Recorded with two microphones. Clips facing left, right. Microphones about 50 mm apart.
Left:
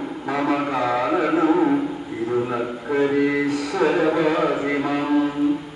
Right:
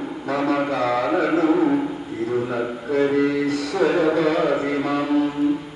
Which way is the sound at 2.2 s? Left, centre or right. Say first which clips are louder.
Even; centre.